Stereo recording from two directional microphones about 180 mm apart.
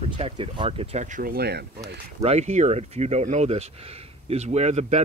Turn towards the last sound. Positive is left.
turn(degrees=-40)  # may be behind; listen again after turning